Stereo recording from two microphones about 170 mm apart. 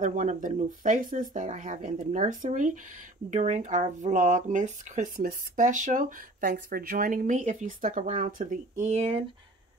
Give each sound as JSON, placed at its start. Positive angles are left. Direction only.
{"t": 0.0, "sound": "speech", "side_deg": -50}